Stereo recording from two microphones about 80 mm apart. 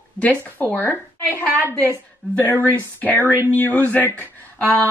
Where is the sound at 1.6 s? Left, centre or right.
Right.